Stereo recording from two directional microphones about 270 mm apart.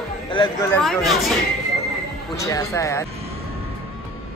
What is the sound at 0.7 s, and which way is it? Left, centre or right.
Speech, centre.